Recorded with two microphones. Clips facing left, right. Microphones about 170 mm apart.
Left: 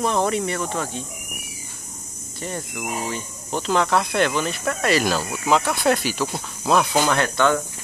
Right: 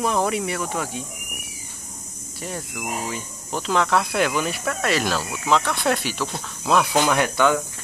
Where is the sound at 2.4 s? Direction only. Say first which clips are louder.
Left 1 dB; centre (ahead or behind).